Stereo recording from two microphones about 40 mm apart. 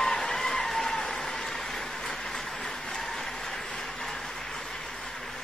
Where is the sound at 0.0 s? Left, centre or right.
Centre.